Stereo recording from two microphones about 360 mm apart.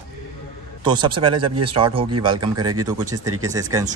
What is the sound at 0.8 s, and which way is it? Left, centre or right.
Speech, centre.